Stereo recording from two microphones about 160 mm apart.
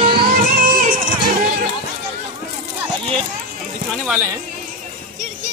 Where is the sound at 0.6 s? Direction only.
60° right (ahead or behind).